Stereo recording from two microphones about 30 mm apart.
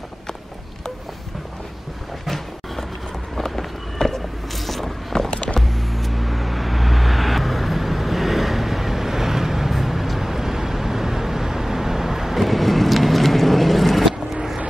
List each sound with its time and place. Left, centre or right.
2.2 s a sound: centre
3.3 s run: centre
4.6 s vehicle: centre
5.3 s music: left
5.6 s vehicle: centre
12.4 s vehicle: centre
14.3 s vehicle: centre